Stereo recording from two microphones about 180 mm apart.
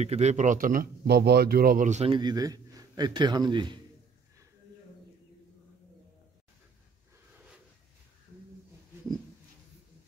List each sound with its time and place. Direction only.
0.0 s speech: 40° right (ahead or behind)
2.1 s a man's voice: 20° right (ahead or behind)